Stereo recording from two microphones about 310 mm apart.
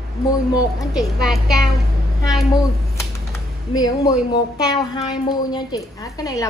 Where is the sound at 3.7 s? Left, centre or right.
Centre.